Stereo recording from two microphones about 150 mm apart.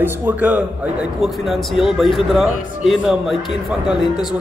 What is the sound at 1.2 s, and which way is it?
A man's voice, centre (ahead or behind).